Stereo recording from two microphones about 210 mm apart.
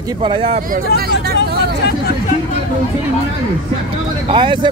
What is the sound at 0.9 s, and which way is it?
Speech, 45° right (ahead or behind).